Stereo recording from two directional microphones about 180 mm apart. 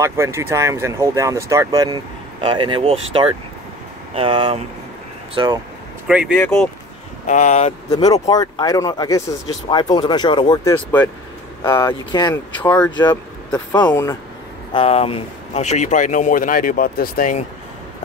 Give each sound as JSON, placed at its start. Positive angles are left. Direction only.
{"t": 0.0, "sound": "speech", "side_deg": -15}
{"t": 6.0, "sound": "speech", "side_deg": -5}
{"t": 6.3, "sound": "speech", "side_deg": 5}
{"t": 7.2, "sound": "speech", "side_deg": 40}
{"t": 7.9, "sound": "speech", "side_deg": 20}
{"t": 11.6, "sound": "speech", "side_deg": 15}
{"t": 14.7, "sound": "speech", "side_deg": 30}